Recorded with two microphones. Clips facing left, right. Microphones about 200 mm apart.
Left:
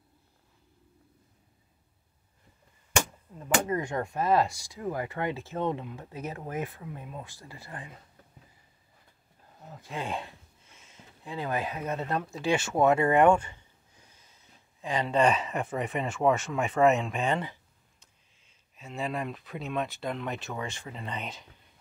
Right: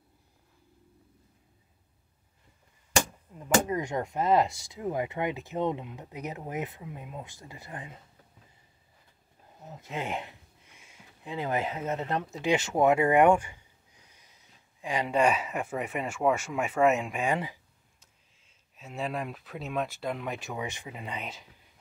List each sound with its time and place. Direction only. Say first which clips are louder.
3.6 s speech: even; 20° right (ahead or behind)
9.7 s speech: right 1 dB; 20° right (ahead or behind); by 21.5 s 5° right (ahead or behind)